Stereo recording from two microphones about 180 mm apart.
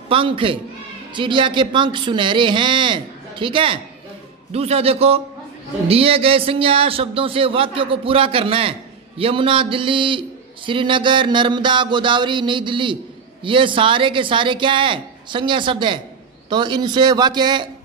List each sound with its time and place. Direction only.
0.1 s a man's voice: 30° right (ahead or behind)